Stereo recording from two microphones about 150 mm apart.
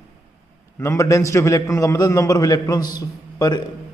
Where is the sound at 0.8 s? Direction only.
20° left (ahead or behind).